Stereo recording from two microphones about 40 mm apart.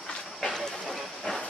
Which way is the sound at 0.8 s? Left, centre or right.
Centre.